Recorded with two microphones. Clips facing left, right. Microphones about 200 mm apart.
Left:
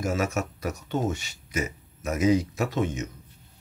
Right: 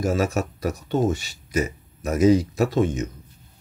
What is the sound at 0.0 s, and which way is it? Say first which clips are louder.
Speech: right 4 dB; 35° right (ahead or behind).